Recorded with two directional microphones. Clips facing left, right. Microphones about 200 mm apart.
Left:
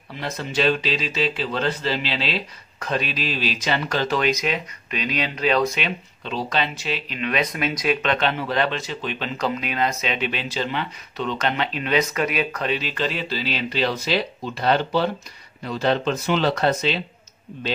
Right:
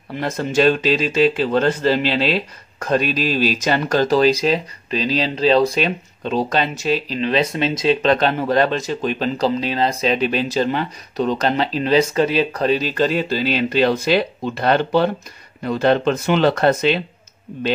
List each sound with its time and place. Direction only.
0.1 s speech: 50° right (ahead or behind)